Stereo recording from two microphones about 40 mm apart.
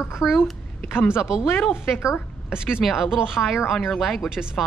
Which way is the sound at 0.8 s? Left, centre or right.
Left.